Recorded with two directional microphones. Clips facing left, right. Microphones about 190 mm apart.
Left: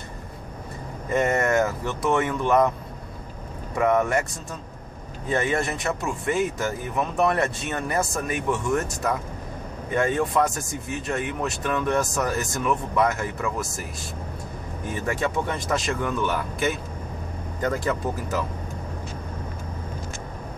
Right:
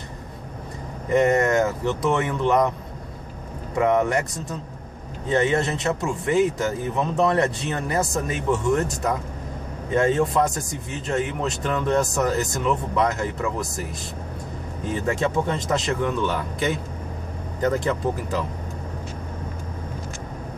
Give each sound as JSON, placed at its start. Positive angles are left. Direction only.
{"t": 1.0, "sound": "speech", "side_deg": -20}
{"t": 3.7, "sound": "speech", "side_deg": -20}
{"t": 15.0, "sound": "speech", "side_deg": -25}